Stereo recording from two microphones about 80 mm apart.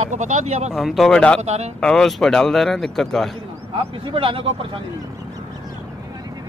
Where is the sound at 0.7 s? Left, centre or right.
Centre.